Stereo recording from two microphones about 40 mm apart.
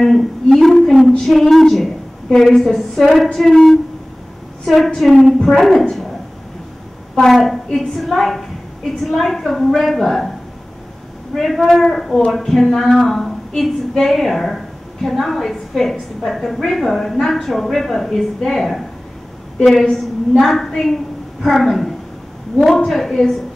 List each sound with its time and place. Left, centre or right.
0.0 s a sound: centre
1.2 s a woman's voice: centre
7.2 s a woman's voice: centre
11.3 s a woman's voice: centre